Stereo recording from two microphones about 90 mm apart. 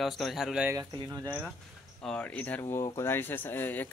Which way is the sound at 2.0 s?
15° left (ahead or behind).